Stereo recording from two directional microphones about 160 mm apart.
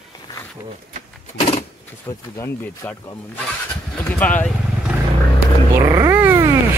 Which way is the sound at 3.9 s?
10° left (ahead or behind).